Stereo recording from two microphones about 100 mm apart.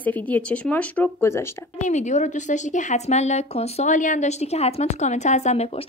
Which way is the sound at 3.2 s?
90° left.